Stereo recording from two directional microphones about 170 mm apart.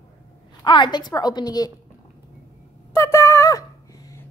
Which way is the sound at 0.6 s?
30° left (ahead or behind).